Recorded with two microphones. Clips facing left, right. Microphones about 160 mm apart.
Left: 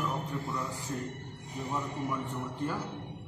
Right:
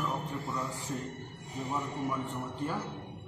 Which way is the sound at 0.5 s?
20° right (ahead or behind).